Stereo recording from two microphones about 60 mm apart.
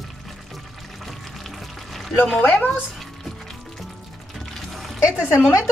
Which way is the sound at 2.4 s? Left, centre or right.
Left.